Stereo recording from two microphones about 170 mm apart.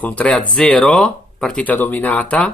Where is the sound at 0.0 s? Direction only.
10° left (ahead or behind).